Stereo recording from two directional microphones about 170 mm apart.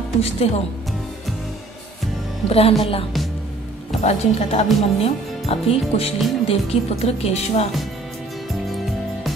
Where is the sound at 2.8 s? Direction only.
35° left (ahead or behind).